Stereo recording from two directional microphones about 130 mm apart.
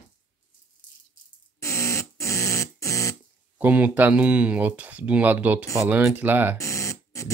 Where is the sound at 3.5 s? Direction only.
10° right (ahead or behind).